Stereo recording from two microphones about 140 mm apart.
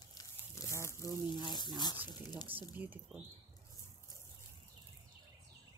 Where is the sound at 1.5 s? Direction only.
30° left (ahead or behind).